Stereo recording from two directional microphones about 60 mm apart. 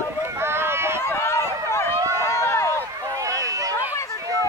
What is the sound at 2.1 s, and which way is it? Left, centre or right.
Run, left.